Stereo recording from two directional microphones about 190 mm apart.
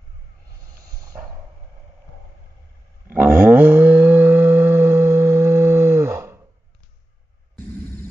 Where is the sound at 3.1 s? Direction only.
10° right (ahead or behind).